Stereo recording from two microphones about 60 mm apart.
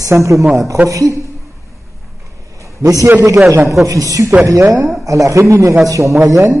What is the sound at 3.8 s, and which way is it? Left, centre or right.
A woman's voice, right.